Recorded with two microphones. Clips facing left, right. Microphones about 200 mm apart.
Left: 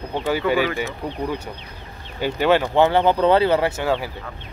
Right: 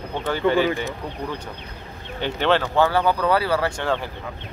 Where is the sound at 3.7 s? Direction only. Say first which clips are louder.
Left 2 dB; 10° left (ahead or behind).